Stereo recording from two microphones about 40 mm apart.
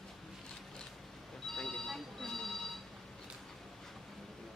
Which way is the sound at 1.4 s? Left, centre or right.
Centre.